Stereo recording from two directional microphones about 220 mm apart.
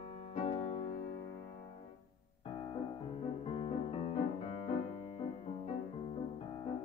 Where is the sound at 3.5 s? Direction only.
25° left (ahead or behind).